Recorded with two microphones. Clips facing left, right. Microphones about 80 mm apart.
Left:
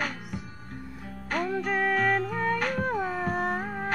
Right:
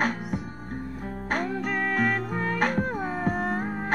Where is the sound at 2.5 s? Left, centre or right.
Right.